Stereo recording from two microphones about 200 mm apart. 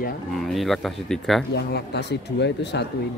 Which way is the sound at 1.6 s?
55° left (ahead or behind).